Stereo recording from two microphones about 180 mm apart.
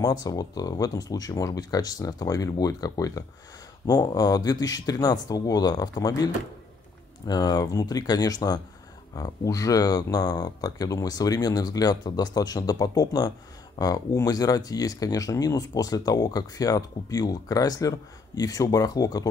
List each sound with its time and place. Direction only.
0.0 s speech: 20° left (ahead or behind)